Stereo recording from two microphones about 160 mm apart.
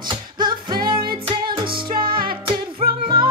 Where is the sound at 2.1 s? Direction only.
65° right (ahead or behind).